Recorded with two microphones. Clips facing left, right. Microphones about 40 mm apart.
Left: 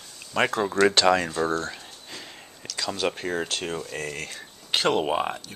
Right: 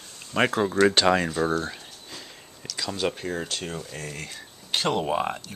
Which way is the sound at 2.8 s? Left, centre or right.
Centre.